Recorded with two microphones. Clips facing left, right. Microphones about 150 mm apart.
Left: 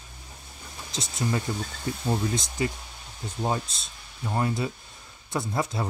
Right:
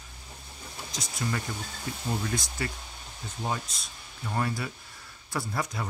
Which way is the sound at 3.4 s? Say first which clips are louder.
Left 5 dB; 30° left (ahead or behind).